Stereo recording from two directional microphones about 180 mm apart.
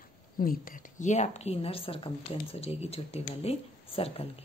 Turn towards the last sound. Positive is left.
turn(degrees=35)  # may be behind; listen again after turning